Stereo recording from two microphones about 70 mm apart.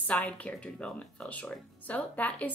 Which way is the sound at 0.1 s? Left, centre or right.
Centre.